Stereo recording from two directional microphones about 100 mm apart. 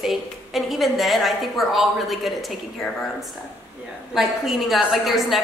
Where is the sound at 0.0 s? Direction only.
5° right (ahead or behind).